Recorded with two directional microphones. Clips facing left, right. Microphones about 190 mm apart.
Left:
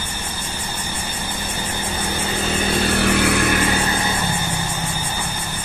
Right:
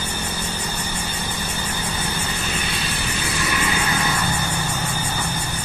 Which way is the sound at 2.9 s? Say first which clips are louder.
Left 10 dB; 70° left (ahead or behind).